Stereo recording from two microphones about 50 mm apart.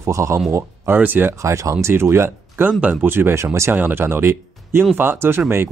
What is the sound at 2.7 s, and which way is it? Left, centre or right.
Speech, right.